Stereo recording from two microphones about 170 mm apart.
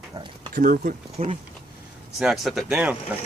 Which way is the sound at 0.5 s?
55° right (ahead or behind).